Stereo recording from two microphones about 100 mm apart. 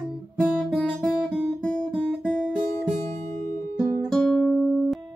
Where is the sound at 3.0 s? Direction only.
30° left (ahead or behind).